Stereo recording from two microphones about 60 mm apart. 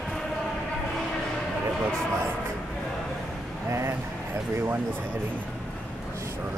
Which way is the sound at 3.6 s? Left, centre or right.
Right.